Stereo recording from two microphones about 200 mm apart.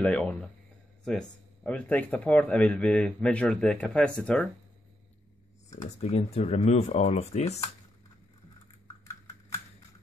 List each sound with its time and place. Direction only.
0.0 s speech: 5° left (ahead or behind)
5.8 s speech: 30° left (ahead or behind)